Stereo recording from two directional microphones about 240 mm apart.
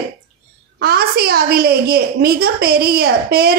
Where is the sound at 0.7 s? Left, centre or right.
Right.